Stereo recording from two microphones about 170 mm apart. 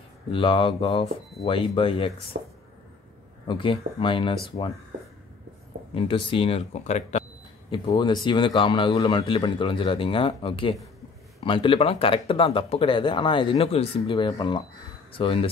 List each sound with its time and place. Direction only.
0.3 s speech: 30° left (ahead or behind)
2.3 s speech: 60° right (ahead or behind)
3.4 s a man's voice: 30° left (ahead or behind)
5.9 s speech: 30° left (ahead or behind)
7.7 s a man's voice: 25° left (ahead or behind)